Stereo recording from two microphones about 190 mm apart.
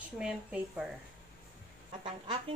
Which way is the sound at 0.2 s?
5° right (ahead or behind).